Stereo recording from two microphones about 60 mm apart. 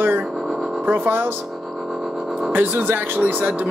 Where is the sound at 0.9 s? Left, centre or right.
Right.